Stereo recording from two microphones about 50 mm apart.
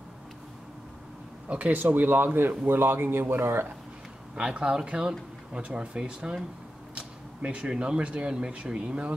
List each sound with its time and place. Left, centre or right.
1.5 s speech: right
4.4 s speech: centre